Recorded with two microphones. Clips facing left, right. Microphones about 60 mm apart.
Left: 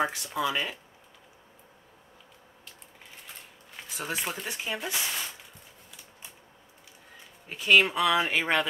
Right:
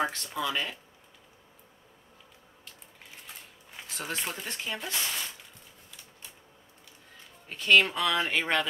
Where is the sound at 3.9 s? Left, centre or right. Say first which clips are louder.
Left 2 dB; centre.